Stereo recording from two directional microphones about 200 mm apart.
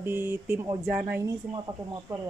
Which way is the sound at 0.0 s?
10° right (ahead or behind).